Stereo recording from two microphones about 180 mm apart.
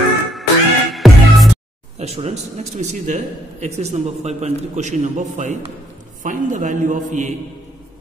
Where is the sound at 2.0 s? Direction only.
35° right (ahead or behind).